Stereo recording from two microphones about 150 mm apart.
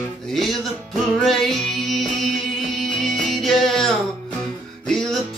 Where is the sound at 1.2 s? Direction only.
5° left (ahead or behind).